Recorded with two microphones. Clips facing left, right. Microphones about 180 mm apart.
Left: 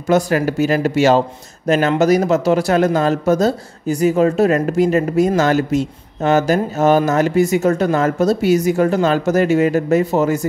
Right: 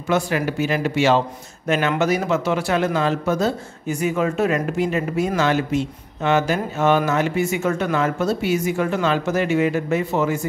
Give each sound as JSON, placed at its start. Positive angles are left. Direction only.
{"t": 0.1, "sound": "speech", "side_deg": 40}